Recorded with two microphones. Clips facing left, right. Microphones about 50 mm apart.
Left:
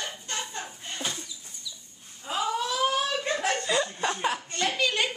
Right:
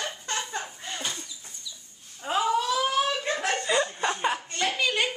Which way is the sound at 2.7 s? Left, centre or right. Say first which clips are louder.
Right 1 dB; centre.